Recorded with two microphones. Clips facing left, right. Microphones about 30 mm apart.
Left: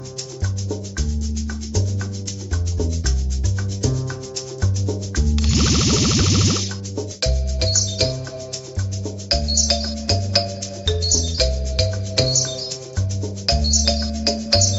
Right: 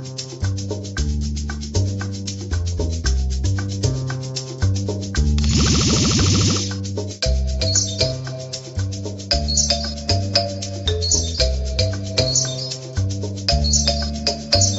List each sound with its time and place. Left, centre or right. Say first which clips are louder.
3.8 s music: left 3 dB; centre
4.7 s music: right 1 dB; right
5.3 s music: even; centre
9.3 s music: even; centre
13.5 s music: even; centre